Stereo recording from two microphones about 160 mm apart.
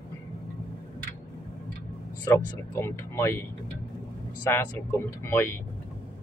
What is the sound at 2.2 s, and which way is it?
Speech, 20° left (ahead or behind).